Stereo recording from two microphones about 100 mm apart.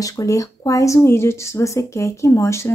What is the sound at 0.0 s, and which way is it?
A woman's voice, 35° left (ahead or behind).